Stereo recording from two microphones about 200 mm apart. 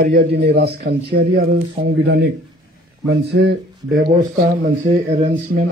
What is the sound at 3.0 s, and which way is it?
Speech, 55° right (ahead or behind).